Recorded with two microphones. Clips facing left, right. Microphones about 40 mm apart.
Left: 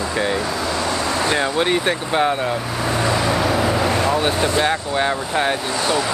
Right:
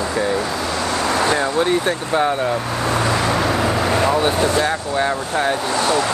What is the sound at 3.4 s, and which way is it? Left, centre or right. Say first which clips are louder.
Vehicle: even; centre.